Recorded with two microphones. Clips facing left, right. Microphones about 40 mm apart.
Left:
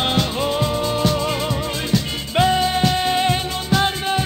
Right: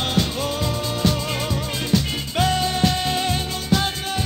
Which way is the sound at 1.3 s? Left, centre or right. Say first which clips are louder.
Left 3 dB; centre.